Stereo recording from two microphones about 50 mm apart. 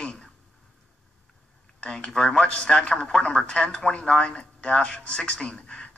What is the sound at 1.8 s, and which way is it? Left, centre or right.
Speech, centre.